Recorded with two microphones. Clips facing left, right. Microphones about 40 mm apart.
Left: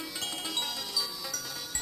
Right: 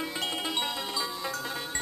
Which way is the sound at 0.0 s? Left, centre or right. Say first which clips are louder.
Right 5 dB; right.